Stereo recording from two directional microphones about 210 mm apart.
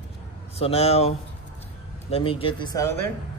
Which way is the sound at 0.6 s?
30° left (ahead or behind).